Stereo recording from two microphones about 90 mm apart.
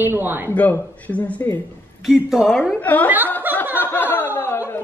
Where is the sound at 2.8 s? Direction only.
20° left (ahead or behind).